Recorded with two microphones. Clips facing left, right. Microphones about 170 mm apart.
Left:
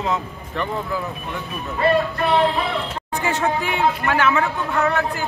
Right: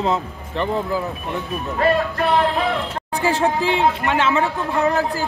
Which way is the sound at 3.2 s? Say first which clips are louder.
Right 3 dB; 30° right (ahead or behind).